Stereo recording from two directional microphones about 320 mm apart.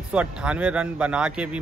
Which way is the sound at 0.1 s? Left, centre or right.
Centre.